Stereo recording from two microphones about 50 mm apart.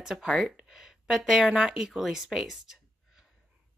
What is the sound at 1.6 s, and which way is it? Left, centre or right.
A woman's voice, centre.